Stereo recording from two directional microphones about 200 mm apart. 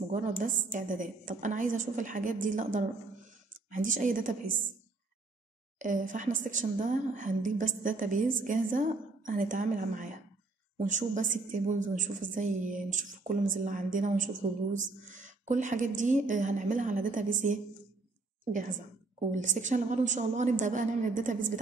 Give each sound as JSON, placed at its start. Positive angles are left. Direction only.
{"t": 0.1, "sound": "a woman's voice", "side_deg": -40}
{"t": 5.8, "sound": "a woman's voice", "side_deg": -40}